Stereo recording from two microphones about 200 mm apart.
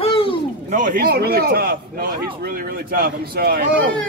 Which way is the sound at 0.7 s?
40° right (ahead or behind).